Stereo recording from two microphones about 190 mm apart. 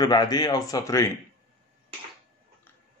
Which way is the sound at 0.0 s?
20° left (ahead or behind).